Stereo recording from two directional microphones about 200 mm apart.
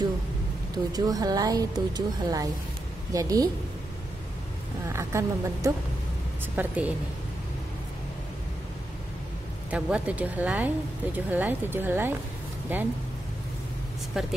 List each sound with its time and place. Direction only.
0.9 s a woman's voice: 20° right (ahead or behind)
4.8 s a woman's voice: 15° right (ahead or behind)
9.7 s a woman's voice: 5° right (ahead or behind)
14.2 s speech: 5° right (ahead or behind)